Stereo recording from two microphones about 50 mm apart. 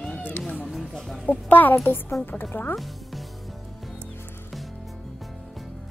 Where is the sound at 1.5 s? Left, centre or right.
Left.